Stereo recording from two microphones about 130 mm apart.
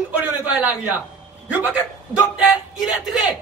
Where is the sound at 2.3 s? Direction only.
5° right (ahead or behind).